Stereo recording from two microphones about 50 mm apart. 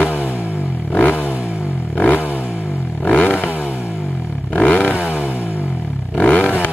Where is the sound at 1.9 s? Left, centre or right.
Left.